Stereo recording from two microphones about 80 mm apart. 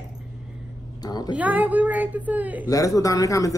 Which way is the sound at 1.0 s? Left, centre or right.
Left.